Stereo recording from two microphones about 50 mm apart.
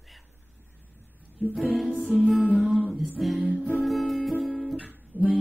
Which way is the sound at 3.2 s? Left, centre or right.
Centre.